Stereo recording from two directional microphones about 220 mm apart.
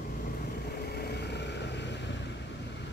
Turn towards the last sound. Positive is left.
turn(degrees=55)  # may be behind; listen again after turning